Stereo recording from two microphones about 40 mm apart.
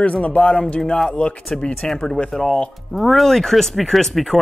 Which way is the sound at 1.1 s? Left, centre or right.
Left.